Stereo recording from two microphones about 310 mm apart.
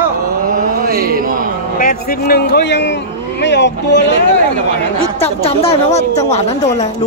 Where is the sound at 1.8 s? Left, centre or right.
Left.